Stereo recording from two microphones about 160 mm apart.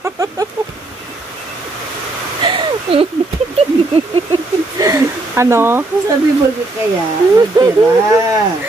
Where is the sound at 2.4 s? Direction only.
30° right (ahead or behind).